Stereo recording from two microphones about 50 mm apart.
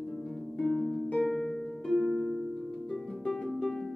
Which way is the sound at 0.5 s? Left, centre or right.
Centre.